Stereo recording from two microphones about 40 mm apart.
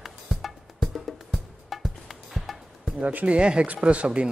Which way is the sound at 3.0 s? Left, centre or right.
Right.